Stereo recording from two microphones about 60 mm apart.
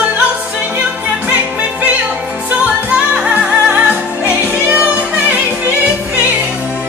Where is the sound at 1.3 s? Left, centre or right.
Right.